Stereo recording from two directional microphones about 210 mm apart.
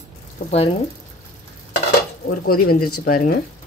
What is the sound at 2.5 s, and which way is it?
Speech, 45° left (ahead or behind).